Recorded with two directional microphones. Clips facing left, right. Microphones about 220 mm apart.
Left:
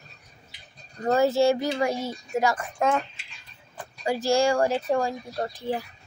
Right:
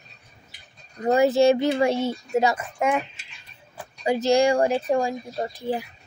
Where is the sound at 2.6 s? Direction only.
10° right (ahead or behind).